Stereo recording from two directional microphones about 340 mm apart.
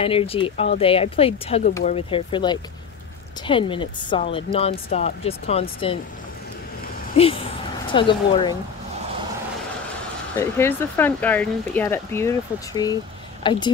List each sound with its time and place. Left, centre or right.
0.0 s speech: centre
7.2 s speech: centre
10.3 s speech: centre